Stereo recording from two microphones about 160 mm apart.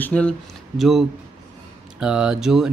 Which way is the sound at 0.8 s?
Centre (ahead or behind).